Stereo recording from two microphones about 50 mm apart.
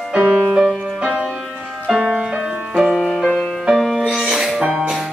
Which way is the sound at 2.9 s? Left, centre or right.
Centre.